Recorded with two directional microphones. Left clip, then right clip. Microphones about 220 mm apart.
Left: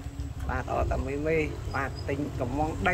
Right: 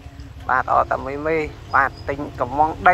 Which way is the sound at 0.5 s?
5° left (ahead or behind).